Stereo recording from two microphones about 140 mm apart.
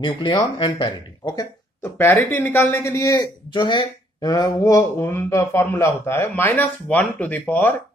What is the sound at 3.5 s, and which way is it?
Speech, 35° left (ahead or behind).